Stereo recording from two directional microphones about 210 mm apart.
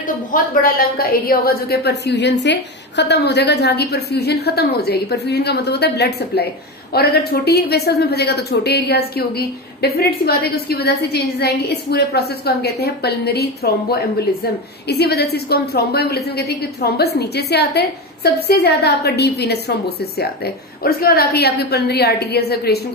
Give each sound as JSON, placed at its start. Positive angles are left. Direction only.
{"t": 0.0, "sound": "a woman's voice", "side_deg": 40}